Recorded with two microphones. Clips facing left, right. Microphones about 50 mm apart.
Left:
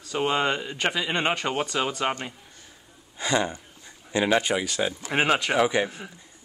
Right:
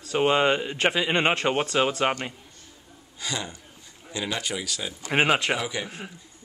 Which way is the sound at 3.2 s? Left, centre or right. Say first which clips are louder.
Left 8 dB; left.